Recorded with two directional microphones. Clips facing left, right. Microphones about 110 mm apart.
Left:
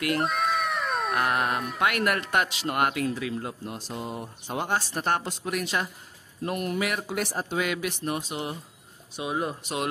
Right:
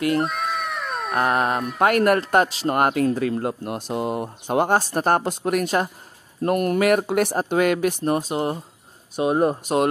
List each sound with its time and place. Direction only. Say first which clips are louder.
0.2 s cat: right 1 dB; centre (ahead or behind)
1.1 s dog: right 7 dB; 30° right (ahead or behind)
1.8 s speech: right 9 dB; 40° right (ahead or behind)